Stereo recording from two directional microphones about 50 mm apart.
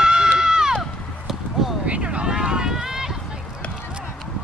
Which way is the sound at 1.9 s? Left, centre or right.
Right.